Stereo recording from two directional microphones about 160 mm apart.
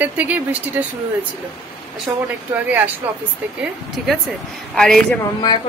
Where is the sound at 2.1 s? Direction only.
15° right (ahead or behind).